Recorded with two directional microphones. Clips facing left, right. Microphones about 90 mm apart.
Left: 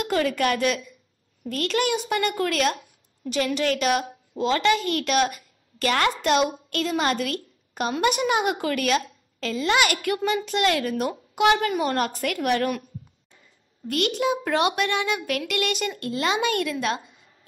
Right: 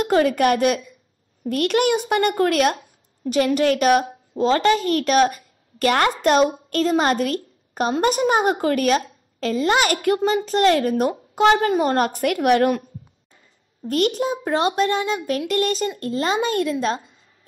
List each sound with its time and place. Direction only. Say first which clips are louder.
0.0 s a woman's voice: right 6 dB; 40° right (ahead or behind)
13.8 s a woman's voice: right 3 dB; 40° right (ahead or behind)